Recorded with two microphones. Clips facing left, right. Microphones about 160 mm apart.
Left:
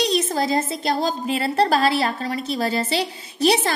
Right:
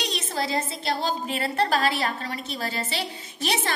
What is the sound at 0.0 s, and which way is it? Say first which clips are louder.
A woman's voice: left 8 dB; 40° left (ahead or behind).